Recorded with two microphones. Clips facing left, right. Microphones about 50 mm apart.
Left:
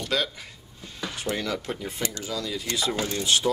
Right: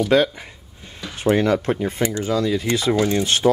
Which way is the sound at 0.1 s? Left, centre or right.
Right.